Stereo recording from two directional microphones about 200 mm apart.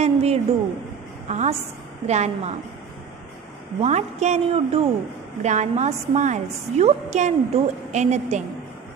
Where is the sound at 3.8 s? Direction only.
35° right (ahead or behind).